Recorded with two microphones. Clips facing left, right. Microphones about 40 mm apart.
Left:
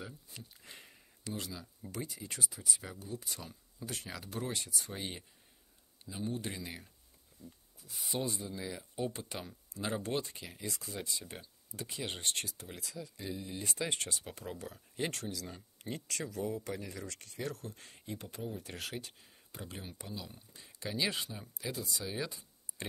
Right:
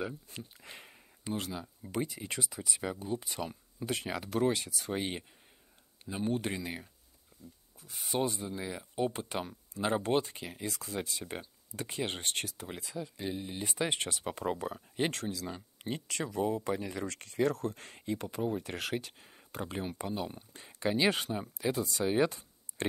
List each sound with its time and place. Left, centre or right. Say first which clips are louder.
0.0 s speech: right 9 dB; right
0.6 s a sound: right 4 dB; right
1.3 s speech: right 6 dB; right
4.9 s speech: right 10 dB; right
6.0 s speech: right 6 dB; right
6.5 s speech: right 6 dB; right
10.7 s speech: right 2 dB; right
16.9 s speech: right 8 dB; right
22.8 s speech: right 9 dB; right